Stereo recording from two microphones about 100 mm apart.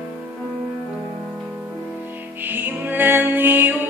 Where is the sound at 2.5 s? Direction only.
20° right (ahead or behind).